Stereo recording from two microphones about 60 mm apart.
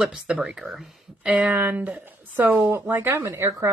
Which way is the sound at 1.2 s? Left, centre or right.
Right.